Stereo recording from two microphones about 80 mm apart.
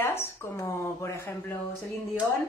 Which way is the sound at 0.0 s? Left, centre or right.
Left.